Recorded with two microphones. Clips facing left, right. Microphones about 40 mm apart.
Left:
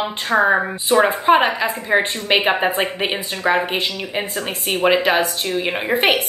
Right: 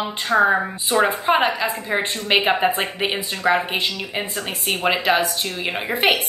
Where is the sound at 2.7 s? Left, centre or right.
Left.